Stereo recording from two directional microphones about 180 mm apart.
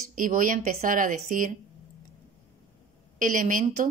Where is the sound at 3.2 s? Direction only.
45° right (ahead or behind).